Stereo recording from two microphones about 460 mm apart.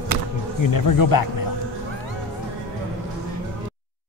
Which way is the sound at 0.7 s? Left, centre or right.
Left.